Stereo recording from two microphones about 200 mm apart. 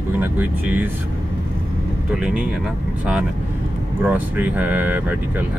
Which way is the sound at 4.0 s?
10° right (ahead or behind).